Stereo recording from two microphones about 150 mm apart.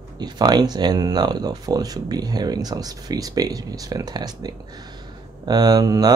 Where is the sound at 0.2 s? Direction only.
25° right (ahead or behind).